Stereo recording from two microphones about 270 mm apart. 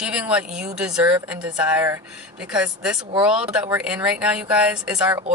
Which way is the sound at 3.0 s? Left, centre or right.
Centre.